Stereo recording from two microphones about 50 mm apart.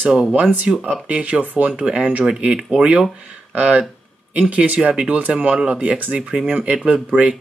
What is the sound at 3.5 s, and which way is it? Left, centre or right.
Speech, right.